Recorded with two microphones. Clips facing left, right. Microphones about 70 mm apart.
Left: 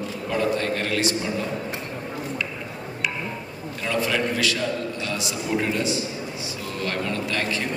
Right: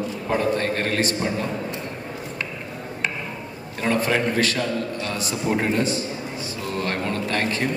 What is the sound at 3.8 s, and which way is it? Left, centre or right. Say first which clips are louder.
A man's voice: right 3 dB; right.